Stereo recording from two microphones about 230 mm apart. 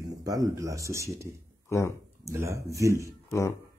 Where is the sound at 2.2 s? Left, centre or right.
Centre.